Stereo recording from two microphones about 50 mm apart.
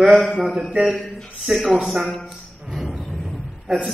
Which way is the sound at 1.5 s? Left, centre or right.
Centre.